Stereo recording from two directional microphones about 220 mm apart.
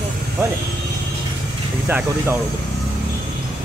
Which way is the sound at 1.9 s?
10° right (ahead or behind).